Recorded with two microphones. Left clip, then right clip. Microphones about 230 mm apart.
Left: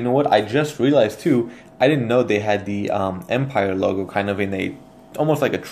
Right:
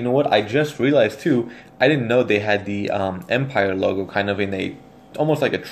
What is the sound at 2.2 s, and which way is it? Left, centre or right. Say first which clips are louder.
Speech: right 1 dB; left.